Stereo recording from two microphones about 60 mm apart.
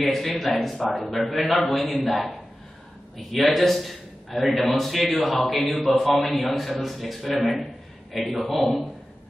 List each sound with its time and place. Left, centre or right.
0.0 s a man's voice: centre